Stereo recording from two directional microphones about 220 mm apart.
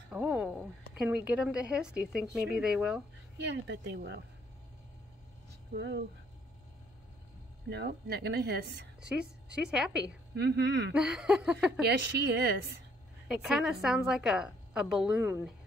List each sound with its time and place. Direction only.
0.1 s a woman's voice: 5° right (ahead or behind)
2.2 s speech: 50° right (ahead or behind)
2.6 s a woman's voice: 5° right (ahead or behind)
3.3 s speech: 50° right (ahead or behind)
5.7 s speech: 55° right (ahead or behind)
7.7 s speech: 50° right (ahead or behind)
9.0 s a woman's voice: 5° right (ahead or behind)
10.3 s speech: 50° right (ahead or behind)
10.9 s a woman's voice: 5° right (ahead or behind)
11.8 s speech: 50° right (ahead or behind)
13.3 s a woman's voice: centre (ahead or behind)